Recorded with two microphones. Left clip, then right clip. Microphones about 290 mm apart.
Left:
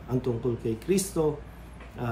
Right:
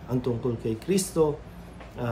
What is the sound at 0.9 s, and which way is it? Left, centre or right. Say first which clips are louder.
Speech: right 3 dB; centre.